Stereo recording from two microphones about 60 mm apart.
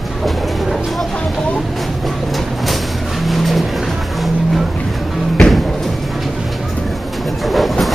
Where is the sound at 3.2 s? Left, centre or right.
Centre.